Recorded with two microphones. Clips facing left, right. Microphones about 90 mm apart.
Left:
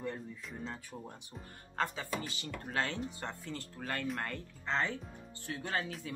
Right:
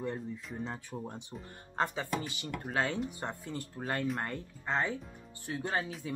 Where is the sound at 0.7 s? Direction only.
20° right (ahead or behind).